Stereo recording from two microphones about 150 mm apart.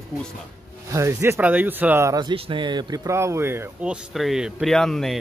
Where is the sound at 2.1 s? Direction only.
30° right (ahead or behind).